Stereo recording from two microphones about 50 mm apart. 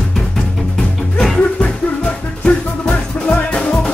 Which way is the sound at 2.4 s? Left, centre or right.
Left.